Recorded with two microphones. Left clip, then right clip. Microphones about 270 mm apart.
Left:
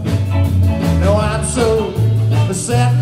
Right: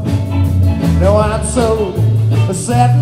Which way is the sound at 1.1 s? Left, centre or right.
Centre.